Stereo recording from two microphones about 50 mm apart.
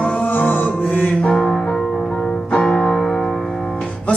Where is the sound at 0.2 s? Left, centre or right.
Left.